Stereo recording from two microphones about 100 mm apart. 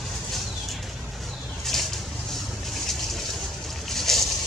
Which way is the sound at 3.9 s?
5° left (ahead or behind).